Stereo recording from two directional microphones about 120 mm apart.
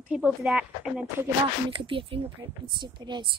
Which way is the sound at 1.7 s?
45° right (ahead or behind).